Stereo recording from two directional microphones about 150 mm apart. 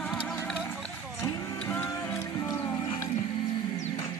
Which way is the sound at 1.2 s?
15° left (ahead or behind).